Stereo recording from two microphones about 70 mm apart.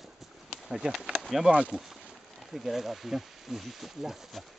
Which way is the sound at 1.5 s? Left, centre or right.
Centre.